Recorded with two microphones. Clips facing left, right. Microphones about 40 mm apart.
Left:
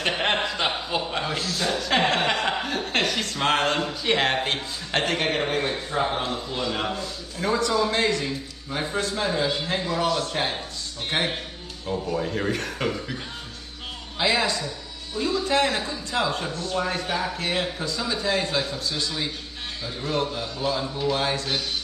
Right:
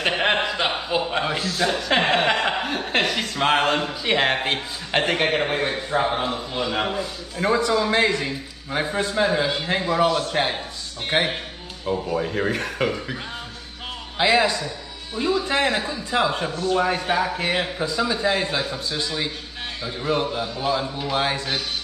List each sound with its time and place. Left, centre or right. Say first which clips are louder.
0.0 s a man's voice: right 3 dB; centre